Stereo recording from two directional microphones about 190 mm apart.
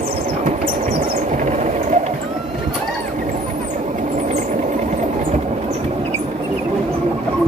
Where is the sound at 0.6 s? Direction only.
35° right (ahead or behind).